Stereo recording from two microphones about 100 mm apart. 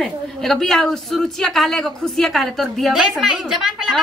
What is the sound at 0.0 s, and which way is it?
A woman's voice, 5° left (ahead or behind).